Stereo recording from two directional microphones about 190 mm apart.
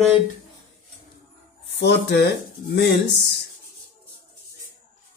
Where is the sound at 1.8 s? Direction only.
60° left (ahead or behind).